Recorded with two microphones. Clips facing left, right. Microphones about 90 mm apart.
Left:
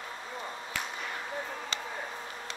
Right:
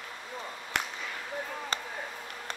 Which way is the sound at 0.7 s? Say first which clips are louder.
Right 5 dB; 65° right (ahead or behind).